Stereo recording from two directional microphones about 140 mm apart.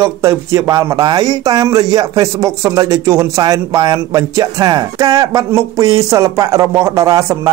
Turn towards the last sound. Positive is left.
turn(degrees=-25)  # may be behind; listen again after turning